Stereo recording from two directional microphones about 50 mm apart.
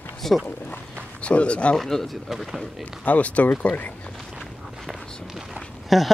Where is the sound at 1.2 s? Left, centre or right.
Left.